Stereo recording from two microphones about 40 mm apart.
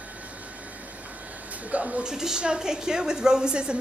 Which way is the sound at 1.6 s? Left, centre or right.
Right.